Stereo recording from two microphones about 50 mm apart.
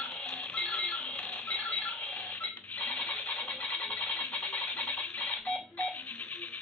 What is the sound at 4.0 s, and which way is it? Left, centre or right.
Music, left.